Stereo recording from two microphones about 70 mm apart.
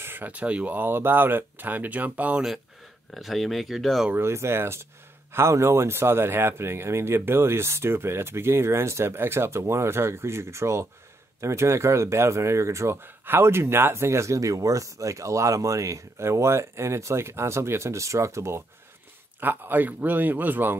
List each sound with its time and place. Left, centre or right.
0.0 s speech: right
3.2 s speech: centre
4.1 s speech: right
13.0 s speech: right
19.4 s speech: right